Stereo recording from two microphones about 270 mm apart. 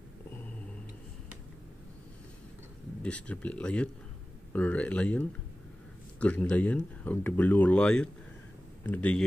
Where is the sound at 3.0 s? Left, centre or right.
Centre.